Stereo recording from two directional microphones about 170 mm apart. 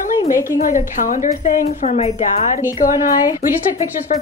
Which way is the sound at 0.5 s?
50° left (ahead or behind).